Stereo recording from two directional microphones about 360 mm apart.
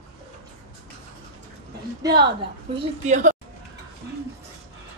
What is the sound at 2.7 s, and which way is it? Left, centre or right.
Speech, centre.